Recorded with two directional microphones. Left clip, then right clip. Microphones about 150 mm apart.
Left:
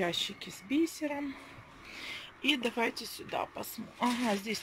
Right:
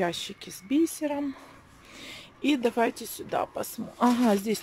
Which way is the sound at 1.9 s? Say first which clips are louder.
Left 1 dB; 25° right (ahead or behind).